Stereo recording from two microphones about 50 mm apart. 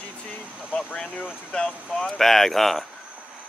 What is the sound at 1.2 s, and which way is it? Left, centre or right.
Speech, centre.